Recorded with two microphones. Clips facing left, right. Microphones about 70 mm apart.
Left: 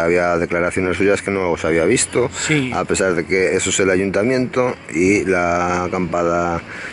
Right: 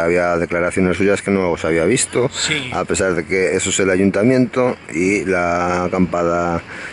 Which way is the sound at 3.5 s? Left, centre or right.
Centre.